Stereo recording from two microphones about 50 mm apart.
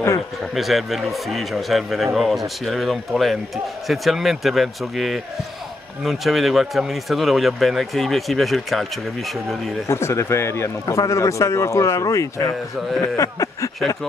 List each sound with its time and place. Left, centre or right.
0.6 s speech: centre
9.8 s speech: left
13.1 s a sound: left